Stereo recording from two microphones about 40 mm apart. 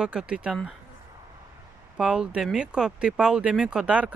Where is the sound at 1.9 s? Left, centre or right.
Right.